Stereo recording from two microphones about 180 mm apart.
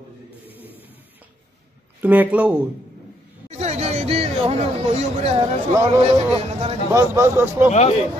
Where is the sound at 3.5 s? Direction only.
40° right (ahead or behind).